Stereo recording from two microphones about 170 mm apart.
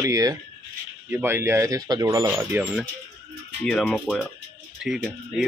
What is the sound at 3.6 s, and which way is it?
Speech, 5° left (ahead or behind).